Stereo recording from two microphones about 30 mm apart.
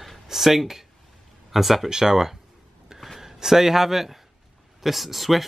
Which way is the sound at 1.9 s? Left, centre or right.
Centre.